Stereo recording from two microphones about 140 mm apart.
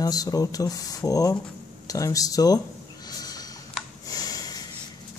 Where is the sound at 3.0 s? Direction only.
25° left (ahead or behind).